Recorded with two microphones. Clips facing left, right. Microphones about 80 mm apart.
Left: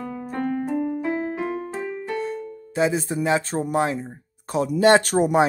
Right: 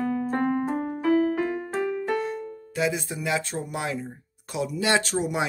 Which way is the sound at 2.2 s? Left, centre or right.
Left.